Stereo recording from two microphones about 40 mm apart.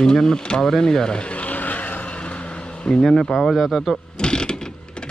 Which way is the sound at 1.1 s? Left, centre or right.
Left.